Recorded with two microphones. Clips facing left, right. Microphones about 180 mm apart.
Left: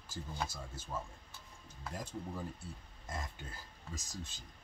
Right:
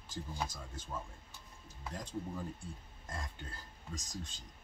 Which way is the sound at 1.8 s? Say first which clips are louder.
Right 1 dB; 5° left (ahead or behind).